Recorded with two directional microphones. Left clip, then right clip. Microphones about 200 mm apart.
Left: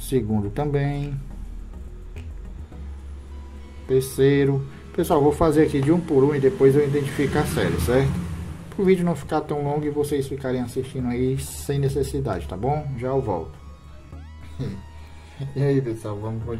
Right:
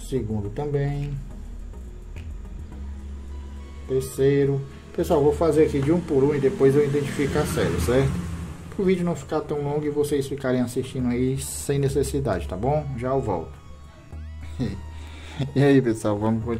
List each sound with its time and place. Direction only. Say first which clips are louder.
0.1 s speech: left 4 dB; 25° left (ahead or behind)
3.9 s speech: left 2 dB; 20° left (ahead or behind); by 13.5 s centre (ahead or behind)
14.6 s speech: right 3 dB; 25° right (ahead or behind)